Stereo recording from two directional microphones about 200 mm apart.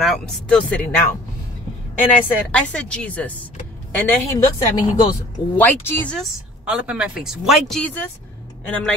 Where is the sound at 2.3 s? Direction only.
5° left (ahead or behind).